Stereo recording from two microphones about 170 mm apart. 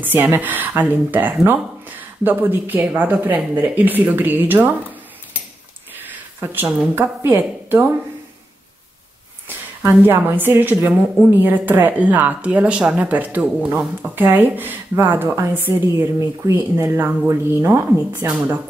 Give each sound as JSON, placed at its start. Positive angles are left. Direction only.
{"t": 0.0, "sound": "a woman's voice", "side_deg": -10}
{"t": 6.1, "sound": "speech", "side_deg": -10}
{"t": 9.5, "sound": "a woman's voice", "side_deg": -10}
{"t": 18.2, "sound": "a woman's voice", "side_deg": -5}